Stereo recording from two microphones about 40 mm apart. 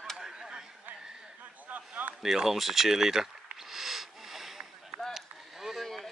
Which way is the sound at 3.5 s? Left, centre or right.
Centre.